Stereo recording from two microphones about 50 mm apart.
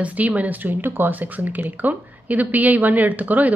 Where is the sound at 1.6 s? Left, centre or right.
Right.